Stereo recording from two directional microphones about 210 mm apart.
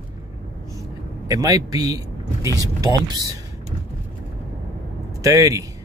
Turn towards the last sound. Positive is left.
turn(degrees=-15)  # may be behind; listen again after turning